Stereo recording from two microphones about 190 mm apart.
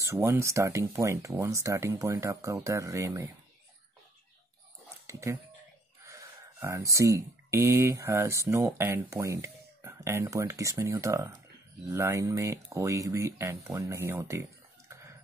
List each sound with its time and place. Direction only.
0.0 s speech: 10° right (ahead or behind)
5.0 s speech: 15° right (ahead or behind)